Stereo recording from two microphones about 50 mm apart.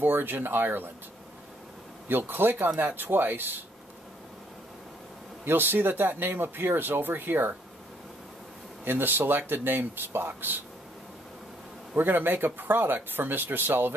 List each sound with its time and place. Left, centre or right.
0.0 s speech: right
2.0 s speech: right
5.4 s speech: right
8.8 s speech: right
11.9 s speech: right